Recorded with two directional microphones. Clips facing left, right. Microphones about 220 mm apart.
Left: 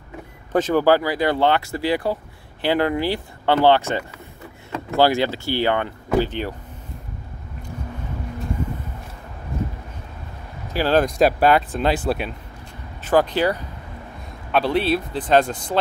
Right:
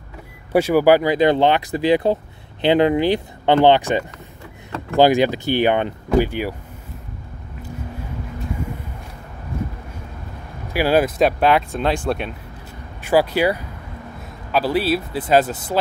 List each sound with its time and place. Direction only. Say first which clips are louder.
0.5 s speech: right 3 dB; 10° right (ahead or behind)
10.7 s speech: right 2 dB; 10° right (ahead or behind); by 12.3 s 5° left (ahead or behind)
13.0 s speech: right 1 dB; 10° right (ahead or behind)